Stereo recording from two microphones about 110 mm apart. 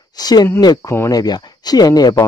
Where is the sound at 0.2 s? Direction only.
35° left (ahead or behind).